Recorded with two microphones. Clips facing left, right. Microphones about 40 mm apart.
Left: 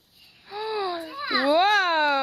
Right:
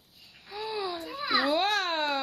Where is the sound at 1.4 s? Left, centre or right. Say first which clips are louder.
Left 12 dB; left.